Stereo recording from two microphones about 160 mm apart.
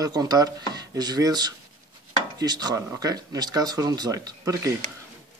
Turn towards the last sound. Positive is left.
turn(degrees=-20)  # may be behind; listen again after turning